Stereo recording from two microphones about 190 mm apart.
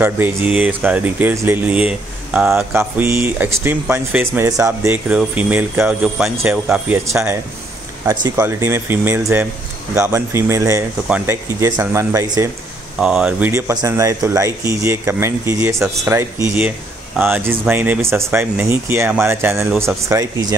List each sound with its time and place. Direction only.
0.0 s speech: 10° right (ahead or behind)
8.1 s speech: 15° right (ahead or behind)
13.0 s speech: 5° right (ahead or behind)
13.5 s speech: 15° right (ahead or behind)